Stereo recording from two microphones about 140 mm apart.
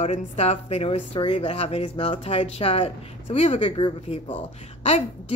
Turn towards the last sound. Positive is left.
turn(degrees=45)  # may be behind; listen again after turning